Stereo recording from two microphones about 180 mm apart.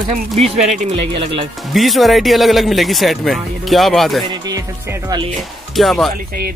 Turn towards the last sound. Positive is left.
turn(degrees=0)  # may be behind; listen again after turning